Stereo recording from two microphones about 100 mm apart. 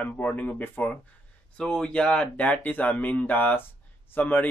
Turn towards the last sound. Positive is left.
turn(degrees=20)  # may be behind; listen again after turning